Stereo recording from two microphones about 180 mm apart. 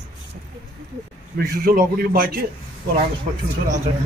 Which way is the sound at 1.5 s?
55° right (ahead or behind).